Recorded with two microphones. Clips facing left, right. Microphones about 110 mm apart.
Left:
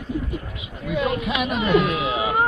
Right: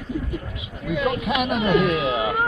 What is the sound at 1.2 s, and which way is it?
Speech, 55° right (ahead or behind).